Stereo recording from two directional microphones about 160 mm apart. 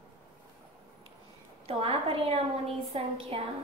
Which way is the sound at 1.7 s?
35° right (ahead or behind).